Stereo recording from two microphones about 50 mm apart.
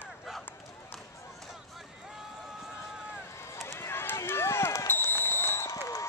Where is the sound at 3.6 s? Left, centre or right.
Left.